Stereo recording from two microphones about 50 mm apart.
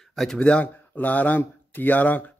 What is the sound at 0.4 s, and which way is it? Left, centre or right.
A man's voice, left.